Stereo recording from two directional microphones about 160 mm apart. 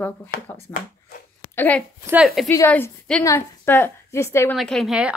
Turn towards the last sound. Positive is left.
turn(degrees=-5)  # may be behind; listen again after turning